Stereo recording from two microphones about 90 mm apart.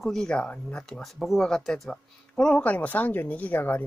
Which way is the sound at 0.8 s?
5° left (ahead or behind).